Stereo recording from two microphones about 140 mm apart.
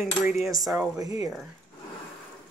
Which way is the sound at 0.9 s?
25° right (ahead or behind).